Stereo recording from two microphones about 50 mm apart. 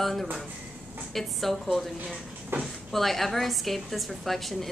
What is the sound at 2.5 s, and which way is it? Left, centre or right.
Speech, right.